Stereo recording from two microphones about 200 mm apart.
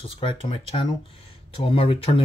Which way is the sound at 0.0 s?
30° left (ahead or behind).